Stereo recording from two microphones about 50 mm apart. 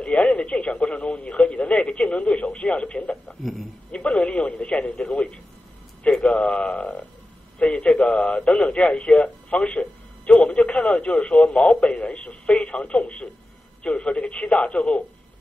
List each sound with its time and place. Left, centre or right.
0.0 s a man's voice: left